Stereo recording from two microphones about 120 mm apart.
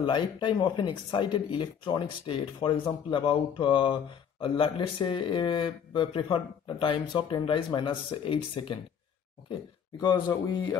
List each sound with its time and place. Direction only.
0.0 s speech: 40° left (ahead or behind)
9.9 s speech: 35° left (ahead or behind)